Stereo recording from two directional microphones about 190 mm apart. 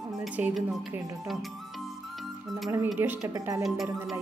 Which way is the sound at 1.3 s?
Centre (ahead or behind).